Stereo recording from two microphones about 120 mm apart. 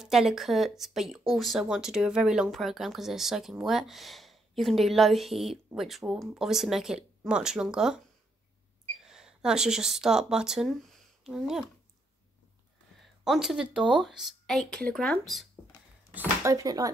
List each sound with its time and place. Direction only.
0.0 s speech: 5° right (ahead or behind)
9.0 s speech: 5° right (ahead or behind)
13.0 s speech: 5° right (ahead or behind)
16.4 s speech: 30° right (ahead or behind)